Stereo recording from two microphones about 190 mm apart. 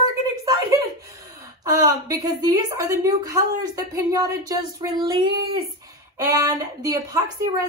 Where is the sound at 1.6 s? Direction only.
20° right (ahead or behind).